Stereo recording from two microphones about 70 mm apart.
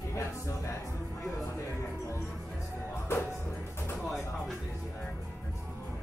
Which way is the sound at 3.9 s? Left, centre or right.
Centre.